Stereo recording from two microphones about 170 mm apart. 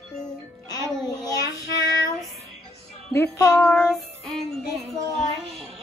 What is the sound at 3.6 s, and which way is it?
Child singing, 5° left (ahead or behind).